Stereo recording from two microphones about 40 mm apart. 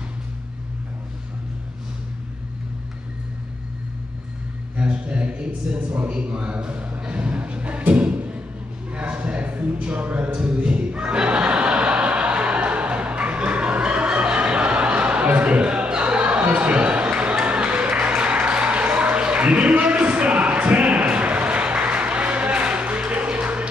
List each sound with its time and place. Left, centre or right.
4.7 s a man's voice: right
7.9 s thump: right
8.9 s a sound: right